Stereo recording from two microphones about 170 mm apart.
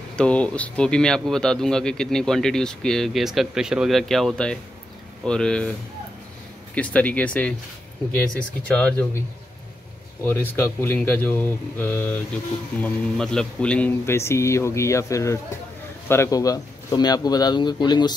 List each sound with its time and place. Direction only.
0.1 s speech: 5° left (ahead or behind)
6.7 s speech: 10° left (ahead or behind)
10.2 s speech: 15° left (ahead or behind)